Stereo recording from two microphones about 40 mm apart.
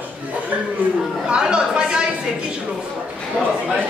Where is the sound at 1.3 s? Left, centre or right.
Centre.